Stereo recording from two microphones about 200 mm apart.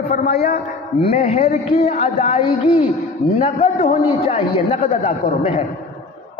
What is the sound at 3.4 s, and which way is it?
A man's voice, 40° left (ahead or behind).